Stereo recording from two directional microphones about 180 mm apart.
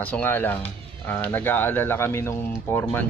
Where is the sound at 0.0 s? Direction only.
10° left (ahead or behind).